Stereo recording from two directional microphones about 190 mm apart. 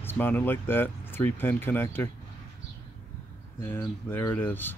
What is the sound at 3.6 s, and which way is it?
Speech, 10° left (ahead or behind).